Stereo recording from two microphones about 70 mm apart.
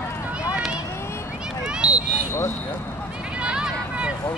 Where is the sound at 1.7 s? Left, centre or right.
Centre.